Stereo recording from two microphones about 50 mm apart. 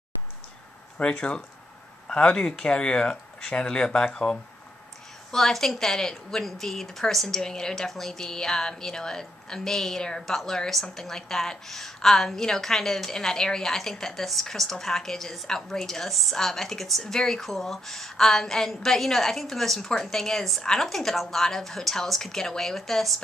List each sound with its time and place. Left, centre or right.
0.9 s a woman's voice: centre